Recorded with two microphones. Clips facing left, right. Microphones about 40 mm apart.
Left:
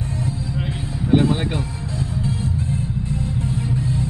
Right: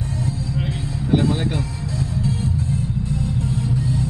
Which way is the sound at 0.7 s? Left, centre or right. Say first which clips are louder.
Left 3 dB; left.